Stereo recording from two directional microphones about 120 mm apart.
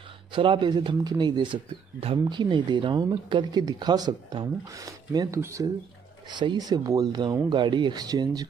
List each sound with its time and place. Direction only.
0.3 s speech: 40° right (ahead or behind); by 5.7 s 25° right (ahead or behind)
6.3 s speech: 40° right (ahead or behind)